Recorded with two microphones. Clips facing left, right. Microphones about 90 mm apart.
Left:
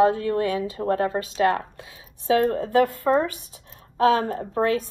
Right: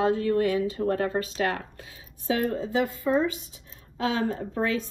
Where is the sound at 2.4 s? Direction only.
55° left (ahead or behind).